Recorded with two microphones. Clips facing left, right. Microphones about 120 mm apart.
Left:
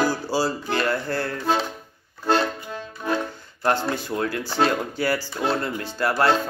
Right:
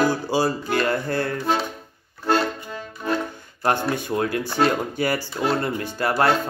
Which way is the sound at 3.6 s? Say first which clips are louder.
Right 1 dB; 20° right (ahead or behind).